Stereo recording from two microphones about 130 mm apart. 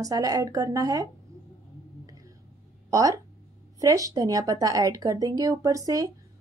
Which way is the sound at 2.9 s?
25° right (ahead or behind).